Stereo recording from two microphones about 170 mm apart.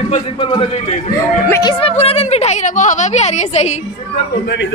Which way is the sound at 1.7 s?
35° left (ahead or behind).